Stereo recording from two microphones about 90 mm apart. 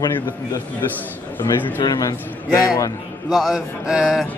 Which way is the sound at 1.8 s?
45° left (ahead or behind).